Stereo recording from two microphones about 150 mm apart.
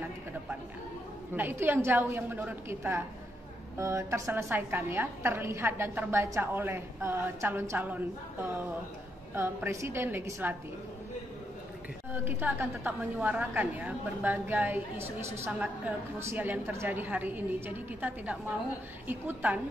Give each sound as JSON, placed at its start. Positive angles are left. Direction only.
{"t": 1.3, "sound": "a woman's voice", "side_deg": -15}
{"t": 12.1, "sound": "a woman's voice", "side_deg": -10}